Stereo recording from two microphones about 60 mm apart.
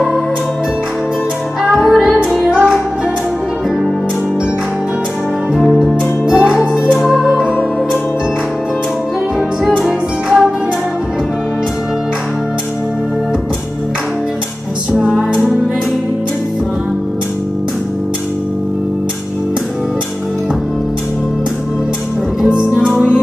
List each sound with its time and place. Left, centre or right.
1.6 s music: centre
5.5 s music: centre
9.8 s music: centre
14.9 s music: centre
22.5 s music: centre